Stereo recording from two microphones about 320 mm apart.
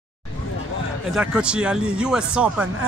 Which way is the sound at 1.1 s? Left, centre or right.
Centre.